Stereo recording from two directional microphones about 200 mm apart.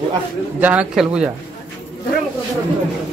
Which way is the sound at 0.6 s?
5° right (ahead or behind).